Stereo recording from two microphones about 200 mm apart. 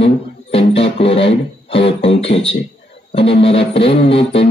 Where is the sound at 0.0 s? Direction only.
30° left (ahead or behind).